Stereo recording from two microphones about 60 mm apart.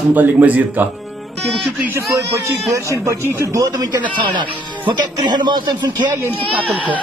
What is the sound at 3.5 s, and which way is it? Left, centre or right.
Speech, right.